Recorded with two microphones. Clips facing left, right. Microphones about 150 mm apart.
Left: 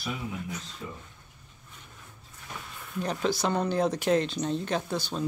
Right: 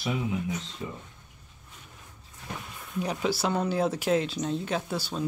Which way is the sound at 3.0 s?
10° right (ahead or behind).